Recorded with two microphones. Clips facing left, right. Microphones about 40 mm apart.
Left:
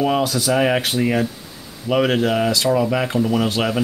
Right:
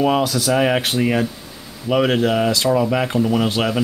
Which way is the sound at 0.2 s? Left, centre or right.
Right.